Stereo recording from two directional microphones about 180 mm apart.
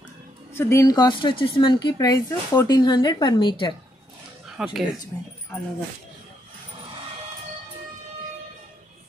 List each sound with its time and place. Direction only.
0.6 s speech: 15° left (ahead or behind)
4.6 s speech: 5° right (ahead or behind)